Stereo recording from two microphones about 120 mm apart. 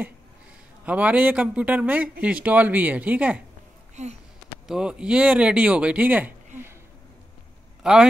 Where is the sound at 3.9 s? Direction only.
70° right (ahead or behind).